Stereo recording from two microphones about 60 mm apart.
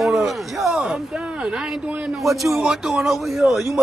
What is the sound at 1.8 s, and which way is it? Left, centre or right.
Speech, centre.